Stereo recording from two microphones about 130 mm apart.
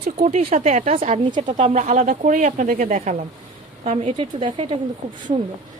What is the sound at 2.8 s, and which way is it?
Speech, 65° right (ahead or behind).